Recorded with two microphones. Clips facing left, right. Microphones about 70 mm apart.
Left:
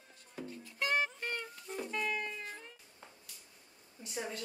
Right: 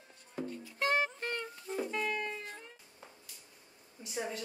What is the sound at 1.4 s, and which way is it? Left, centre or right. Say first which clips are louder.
Music: right 4 dB; centre.